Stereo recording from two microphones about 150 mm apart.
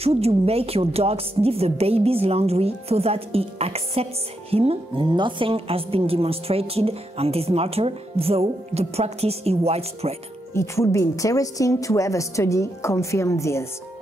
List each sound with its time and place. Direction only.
0.0 s a woman's voice: 40° right (ahead or behind)
10.5 s speech: 20° left (ahead or behind)